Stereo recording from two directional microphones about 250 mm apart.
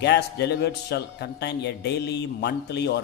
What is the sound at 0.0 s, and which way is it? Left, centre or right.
A man's voice, left.